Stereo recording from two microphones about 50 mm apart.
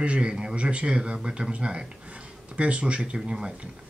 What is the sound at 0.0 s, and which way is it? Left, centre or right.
Speech, centre.